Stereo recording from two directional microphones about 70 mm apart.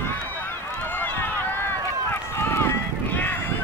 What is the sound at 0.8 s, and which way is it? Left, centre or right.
Run, left.